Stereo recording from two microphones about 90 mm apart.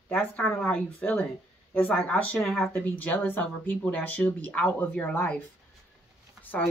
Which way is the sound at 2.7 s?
20° left (ahead or behind).